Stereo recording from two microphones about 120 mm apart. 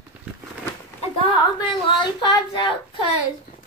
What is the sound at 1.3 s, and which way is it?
Speech, 40° left (ahead or behind).